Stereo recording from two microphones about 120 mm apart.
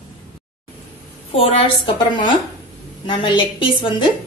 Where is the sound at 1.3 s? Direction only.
50° left (ahead or behind).